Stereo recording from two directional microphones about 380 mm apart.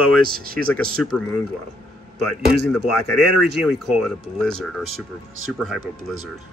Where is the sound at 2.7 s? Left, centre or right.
Centre.